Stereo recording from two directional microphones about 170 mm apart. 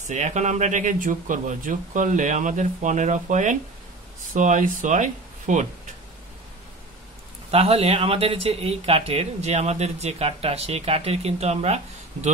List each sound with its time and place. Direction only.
0.1 s speech: 45° right (ahead or behind)
7.5 s speech: 35° right (ahead or behind)